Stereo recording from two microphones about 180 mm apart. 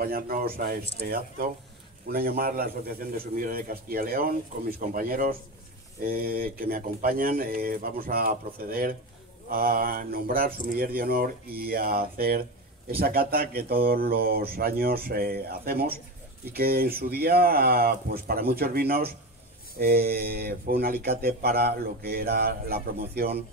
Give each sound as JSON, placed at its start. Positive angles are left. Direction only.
{"t": 0.0, "sound": "speech", "side_deg": -55}